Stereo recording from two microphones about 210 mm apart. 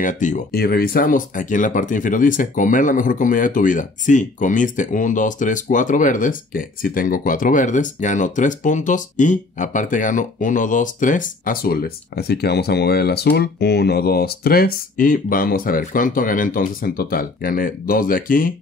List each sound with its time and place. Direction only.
0.0 s speech: 35° left (ahead or behind)